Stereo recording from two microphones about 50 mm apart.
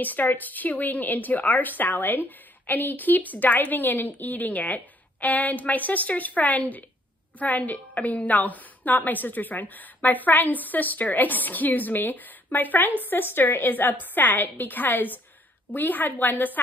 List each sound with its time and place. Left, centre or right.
0.0 s a woman's voice: left